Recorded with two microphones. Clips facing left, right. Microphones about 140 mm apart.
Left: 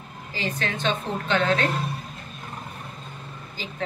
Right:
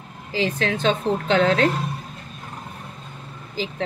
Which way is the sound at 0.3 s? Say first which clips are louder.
Right 6 dB; 90° right.